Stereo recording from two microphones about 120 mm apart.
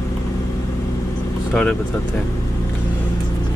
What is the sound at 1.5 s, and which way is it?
Speech, 10° left (ahead or behind).